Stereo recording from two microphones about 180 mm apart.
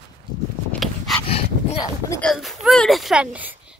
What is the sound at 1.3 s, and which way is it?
Dog, 35° left (ahead or behind).